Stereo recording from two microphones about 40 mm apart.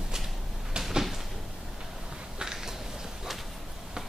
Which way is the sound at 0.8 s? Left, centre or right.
Centre.